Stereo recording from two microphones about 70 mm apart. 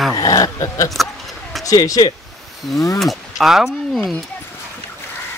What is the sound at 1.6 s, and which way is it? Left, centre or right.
Speech, left.